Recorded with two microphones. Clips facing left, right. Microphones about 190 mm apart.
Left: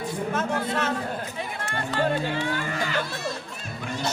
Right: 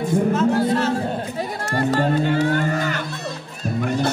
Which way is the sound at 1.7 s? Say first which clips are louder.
Right 6 dB; 40° right (ahead or behind).